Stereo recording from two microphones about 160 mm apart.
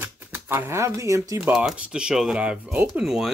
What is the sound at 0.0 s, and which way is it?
Speech, 15° right (ahead or behind).